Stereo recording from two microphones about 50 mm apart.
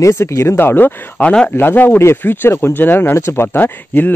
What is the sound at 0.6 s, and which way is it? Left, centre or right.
Speech, left.